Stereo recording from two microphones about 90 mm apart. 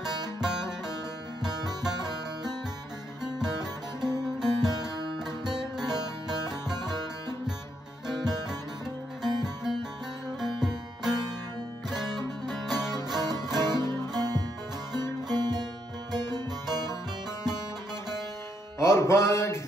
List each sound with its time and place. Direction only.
0.4 s music: 5° right (ahead or behind)
4.0 s music: 5° right (ahead or behind)
5.9 s music: 50° right (ahead or behind)
9.2 s music: 5° right (ahead or behind)
12.0 s music: 50° right (ahead or behind)
12.6 s music: 5° right (ahead or behind)
12.9 s music: 50° right (ahead or behind)
18.8 s music: 30° left (ahead or behind)